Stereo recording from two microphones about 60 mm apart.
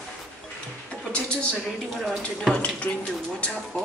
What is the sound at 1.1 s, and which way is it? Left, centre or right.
Speech, left.